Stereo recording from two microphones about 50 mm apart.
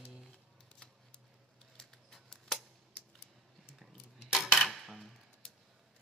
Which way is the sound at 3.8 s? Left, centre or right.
Centre.